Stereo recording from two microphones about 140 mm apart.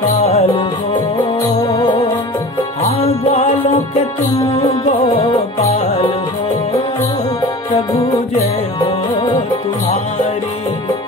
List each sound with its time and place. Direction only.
0.2 s music: 45° left (ahead or behind)
1.7 s music: 25° left (ahead or behind)
3.0 s music: 45° left (ahead or behind)
5.1 s music: 45° left (ahead or behind)
8.7 s music: 35° left (ahead or behind)